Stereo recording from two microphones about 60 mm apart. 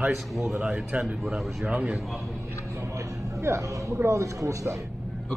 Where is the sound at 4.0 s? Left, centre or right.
Right.